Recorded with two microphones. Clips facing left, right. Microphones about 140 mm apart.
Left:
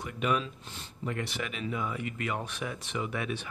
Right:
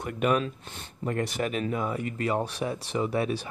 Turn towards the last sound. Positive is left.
turn(degrees=-35)  # may be behind; listen again after turning